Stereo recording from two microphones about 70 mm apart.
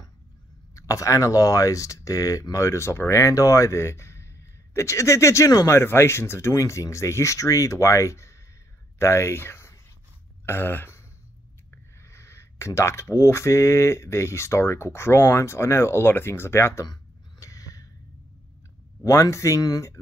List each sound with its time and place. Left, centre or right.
0.7 s speech: left
5.7 s speech: left
16.8 s throat clearing: left
19.3 s speech: left